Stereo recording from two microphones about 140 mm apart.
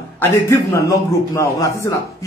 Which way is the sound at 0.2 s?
20° left (ahead or behind).